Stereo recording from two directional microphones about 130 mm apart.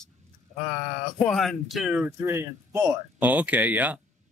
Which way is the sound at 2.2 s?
20° right (ahead or behind).